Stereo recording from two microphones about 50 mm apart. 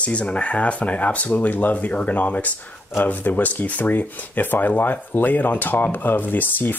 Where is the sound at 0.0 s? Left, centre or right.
Left.